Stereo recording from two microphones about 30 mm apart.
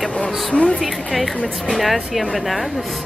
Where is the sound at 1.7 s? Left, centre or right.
Centre.